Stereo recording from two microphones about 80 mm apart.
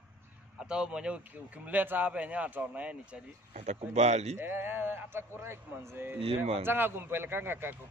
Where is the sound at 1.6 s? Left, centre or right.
Right.